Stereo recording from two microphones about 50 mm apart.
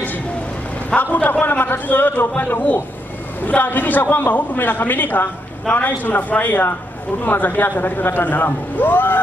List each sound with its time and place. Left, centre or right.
0.8 s a man's voice: left